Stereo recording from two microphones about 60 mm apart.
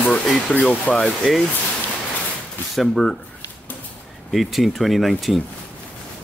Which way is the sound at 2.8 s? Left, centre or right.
Centre.